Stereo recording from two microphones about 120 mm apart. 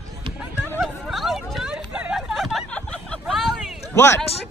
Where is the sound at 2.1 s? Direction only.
Centre (ahead or behind).